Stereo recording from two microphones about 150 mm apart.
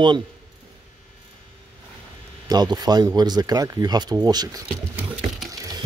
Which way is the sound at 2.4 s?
25° right (ahead or behind).